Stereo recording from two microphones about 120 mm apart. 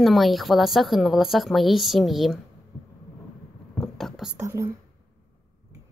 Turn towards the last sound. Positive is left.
turn(degrees=-25)  # may be behind; listen again after turning